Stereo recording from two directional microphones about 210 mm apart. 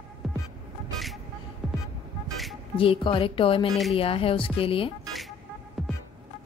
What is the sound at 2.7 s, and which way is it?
Speech, 25° left (ahead or behind).